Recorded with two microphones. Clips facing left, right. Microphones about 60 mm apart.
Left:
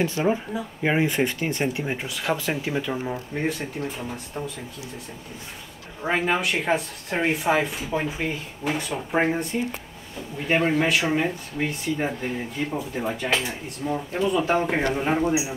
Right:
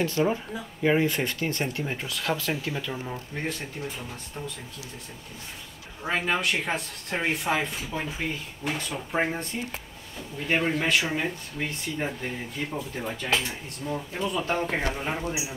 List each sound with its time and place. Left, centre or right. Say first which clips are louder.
0.0 s speech: left 2 dB; centre
6.0 s speech: left 3 dB; centre